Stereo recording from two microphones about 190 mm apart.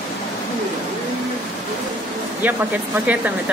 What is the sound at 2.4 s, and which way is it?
Speech, 10° right (ahead or behind).